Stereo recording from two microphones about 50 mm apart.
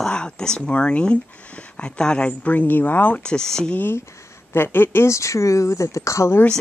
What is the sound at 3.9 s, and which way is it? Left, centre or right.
Speech, left.